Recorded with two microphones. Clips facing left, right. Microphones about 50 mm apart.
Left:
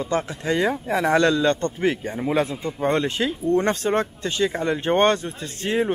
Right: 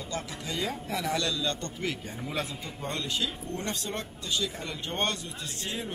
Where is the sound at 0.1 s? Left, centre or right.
Left.